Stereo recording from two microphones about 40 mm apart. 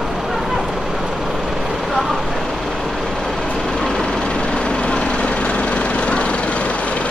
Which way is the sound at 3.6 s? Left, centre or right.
Centre.